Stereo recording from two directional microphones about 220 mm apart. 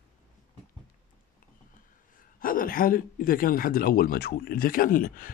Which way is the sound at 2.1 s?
40° left (ahead or behind).